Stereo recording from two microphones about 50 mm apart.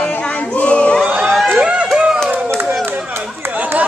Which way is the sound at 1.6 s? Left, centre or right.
Right.